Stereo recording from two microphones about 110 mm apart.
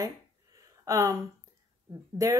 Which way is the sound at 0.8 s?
25° right (ahead or behind).